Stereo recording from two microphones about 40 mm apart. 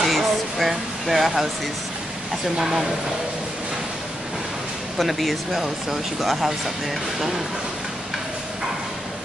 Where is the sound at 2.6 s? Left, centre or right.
Centre.